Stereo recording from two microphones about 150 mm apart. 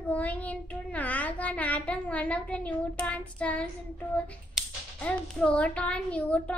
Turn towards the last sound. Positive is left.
turn(degrees=10)  # may be behind; listen again after turning